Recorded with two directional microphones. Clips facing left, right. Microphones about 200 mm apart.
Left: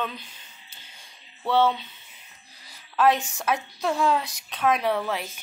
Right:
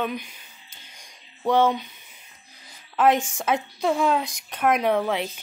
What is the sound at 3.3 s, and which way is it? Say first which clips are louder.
Speech: right 2 dB; 20° right (ahead or behind).